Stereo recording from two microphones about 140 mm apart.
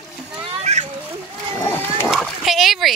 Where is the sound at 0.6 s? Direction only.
55° right (ahead or behind).